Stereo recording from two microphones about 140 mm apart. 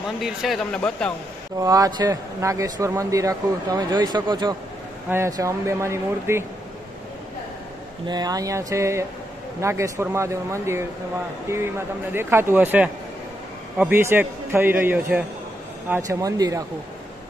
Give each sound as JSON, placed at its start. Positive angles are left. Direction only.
{"t": 0.2, "sound": "speech", "side_deg": 0}
{"t": 1.6, "sound": "speech", "side_deg": -25}
{"t": 5.1, "sound": "speech", "side_deg": -20}
{"t": 8.1, "sound": "speech", "side_deg": -30}
{"t": 16.1, "sound": "speech", "side_deg": -25}